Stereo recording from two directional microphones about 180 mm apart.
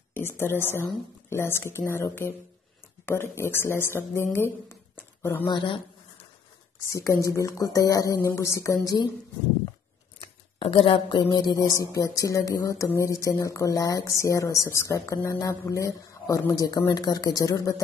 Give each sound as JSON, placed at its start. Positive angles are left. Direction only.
{"t": 0.1, "sound": "a woman's voice", "side_deg": 15}
{"t": 6.9, "sound": "speech", "side_deg": 15}
{"t": 10.1, "sound": "speech", "side_deg": 30}